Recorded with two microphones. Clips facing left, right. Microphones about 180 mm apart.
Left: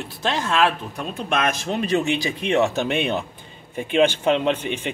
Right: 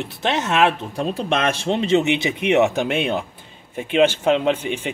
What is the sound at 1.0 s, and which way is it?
Speech, 35° right (ahead or behind).